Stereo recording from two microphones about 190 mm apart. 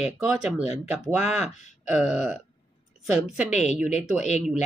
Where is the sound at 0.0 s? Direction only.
5° right (ahead or behind).